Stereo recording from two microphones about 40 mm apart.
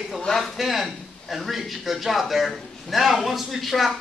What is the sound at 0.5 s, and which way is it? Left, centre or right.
Speech, centre.